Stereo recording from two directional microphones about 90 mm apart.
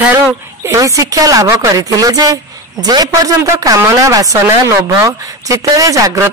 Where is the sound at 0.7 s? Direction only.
35° right (ahead or behind).